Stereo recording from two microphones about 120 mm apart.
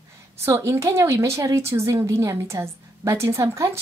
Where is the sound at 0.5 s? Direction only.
25° right (ahead or behind).